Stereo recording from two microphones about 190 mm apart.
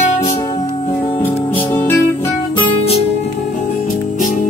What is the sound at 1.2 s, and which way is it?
Music, 10° left (ahead or behind).